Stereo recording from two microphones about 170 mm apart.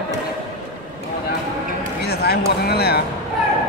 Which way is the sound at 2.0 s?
70° left (ahead or behind).